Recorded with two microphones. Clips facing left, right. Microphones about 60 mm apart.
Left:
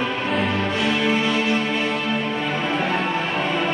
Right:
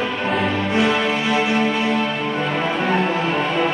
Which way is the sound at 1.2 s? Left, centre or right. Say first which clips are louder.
Right 2 dB; centre.